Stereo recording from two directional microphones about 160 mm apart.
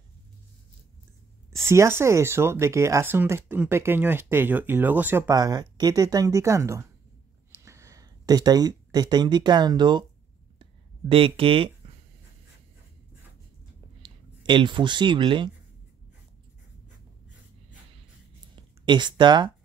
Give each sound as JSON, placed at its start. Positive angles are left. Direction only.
{"t": 1.5, "sound": "speech", "side_deg": -15}
{"t": 5.3, "sound": "speech", "side_deg": -25}
{"t": 10.6, "sound": "a sound", "side_deg": -35}
{"t": 14.0, "sound": "speech", "side_deg": -30}
{"t": 18.9, "sound": "speech", "side_deg": -30}